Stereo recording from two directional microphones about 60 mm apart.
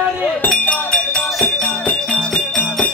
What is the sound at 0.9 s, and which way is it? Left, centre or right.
Music, centre.